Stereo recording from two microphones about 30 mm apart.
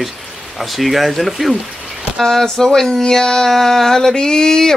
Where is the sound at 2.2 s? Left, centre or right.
Centre.